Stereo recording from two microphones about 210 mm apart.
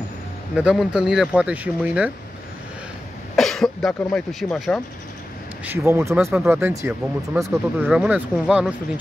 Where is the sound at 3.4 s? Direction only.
Centre (ahead or behind).